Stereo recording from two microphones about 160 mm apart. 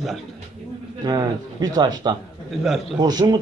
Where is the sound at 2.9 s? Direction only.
25° right (ahead or behind).